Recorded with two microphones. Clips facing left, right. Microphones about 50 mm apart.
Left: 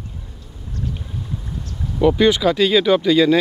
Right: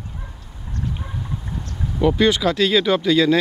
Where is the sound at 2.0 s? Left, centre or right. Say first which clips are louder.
Left 2 dB; centre.